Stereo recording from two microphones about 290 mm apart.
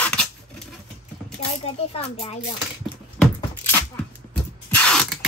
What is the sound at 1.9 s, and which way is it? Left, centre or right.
Speech, left.